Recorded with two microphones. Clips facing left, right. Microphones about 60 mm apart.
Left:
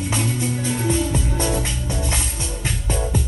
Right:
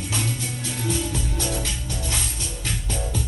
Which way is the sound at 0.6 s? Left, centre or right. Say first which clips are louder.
Left 5 dB; left.